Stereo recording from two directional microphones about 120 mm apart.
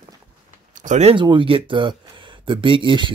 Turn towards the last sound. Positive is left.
turn(degrees=-45)  # may be behind; listen again after turning